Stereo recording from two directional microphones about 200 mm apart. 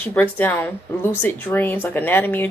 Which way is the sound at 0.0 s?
10° left (ahead or behind).